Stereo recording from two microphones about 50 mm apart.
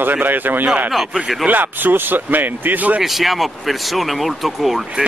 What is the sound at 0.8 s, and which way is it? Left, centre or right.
Speech, centre.